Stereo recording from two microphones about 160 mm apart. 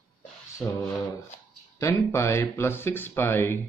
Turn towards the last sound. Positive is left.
turn(degrees=15)  # may be behind; listen again after turning